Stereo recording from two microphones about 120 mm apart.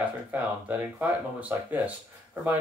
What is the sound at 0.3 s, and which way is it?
Speech, 15° right (ahead or behind).